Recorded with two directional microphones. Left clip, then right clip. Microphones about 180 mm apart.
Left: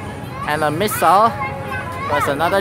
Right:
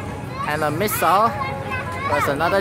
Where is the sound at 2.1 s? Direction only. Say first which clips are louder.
Left 2 dB; 5° left (ahead or behind).